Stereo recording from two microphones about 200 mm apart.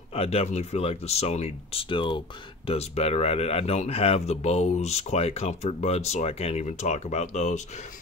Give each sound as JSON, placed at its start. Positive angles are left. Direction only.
{"t": 0.1, "sound": "speech", "side_deg": 30}